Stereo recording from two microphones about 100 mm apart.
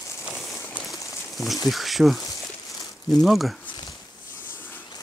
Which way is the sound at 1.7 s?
Centre (ahead or behind).